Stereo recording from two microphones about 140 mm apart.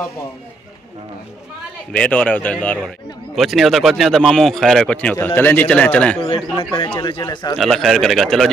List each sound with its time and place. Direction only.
1.9 s a man's voice: 10° left (ahead or behind)
3.3 s a man's voice: centre (ahead or behind)
6.3 s speech: 35° left (ahead or behind)
7.5 s speech: centre (ahead or behind)